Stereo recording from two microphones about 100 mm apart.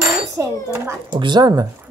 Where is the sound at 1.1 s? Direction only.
50° right (ahead or behind).